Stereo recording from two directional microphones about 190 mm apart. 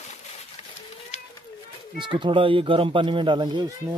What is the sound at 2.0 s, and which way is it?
Speech, 25° right (ahead or behind).